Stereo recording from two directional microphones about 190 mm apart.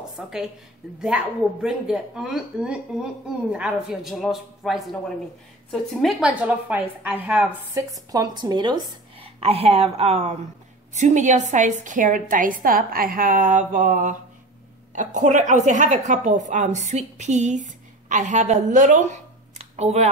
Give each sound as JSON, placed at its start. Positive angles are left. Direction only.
{"t": 0.2, "sound": "a woman's voice", "side_deg": -5}
{"t": 7.9, "sound": "a woman's voice", "side_deg": -20}